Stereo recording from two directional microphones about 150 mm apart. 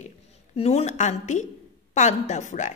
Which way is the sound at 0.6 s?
45° left (ahead or behind).